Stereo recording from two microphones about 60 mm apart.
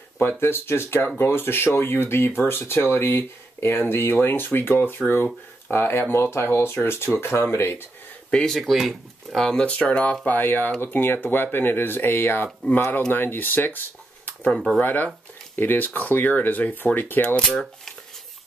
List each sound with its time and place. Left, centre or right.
0.4 s speech: left
8.5 s speech: centre; by 10.1 s left
10.2 s speech: left
17.5 s speech: centre